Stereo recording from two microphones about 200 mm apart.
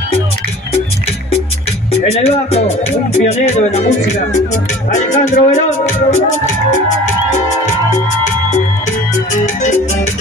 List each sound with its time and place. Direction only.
1.9 s speech: 30° left (ahead or behind)
4.9 s speech: 35° left (ahead or behind)
9.3 s music: 35° left (ahead or behind)